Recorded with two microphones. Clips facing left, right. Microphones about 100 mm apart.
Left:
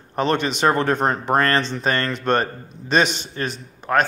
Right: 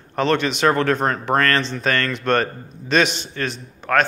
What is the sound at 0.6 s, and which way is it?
A man's voice, 20° left (ahead or behind).